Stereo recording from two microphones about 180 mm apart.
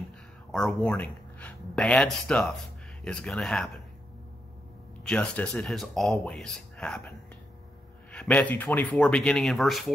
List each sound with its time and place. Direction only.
0.5 s speech: centre (ahead or behind)
5.0 s speech: 5° left (ahead or behind)